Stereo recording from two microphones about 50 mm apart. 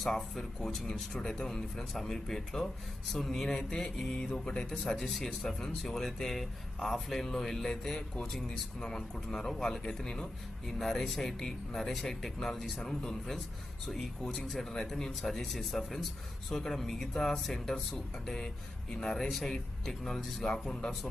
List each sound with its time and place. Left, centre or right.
0.0 s speech: centre
4.9 s speech: centre